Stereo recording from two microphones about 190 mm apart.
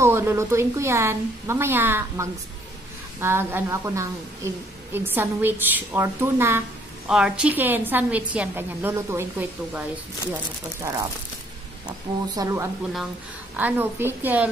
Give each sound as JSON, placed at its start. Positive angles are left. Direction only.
{"t": 0.0, "sound": "a woman's voice", "side_deg": -15}
{"t": 12.4, "sound": "a woman's voice", "side_deg": -15}